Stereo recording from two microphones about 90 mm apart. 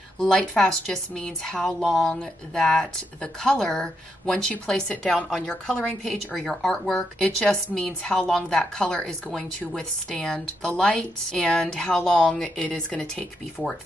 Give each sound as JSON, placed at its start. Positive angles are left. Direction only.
{"t": 0.2, "sound": "a woman's voice", "side_deg": 5}